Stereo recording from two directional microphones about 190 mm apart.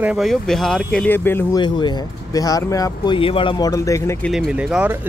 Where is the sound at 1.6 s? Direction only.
25° left (ahead or behind).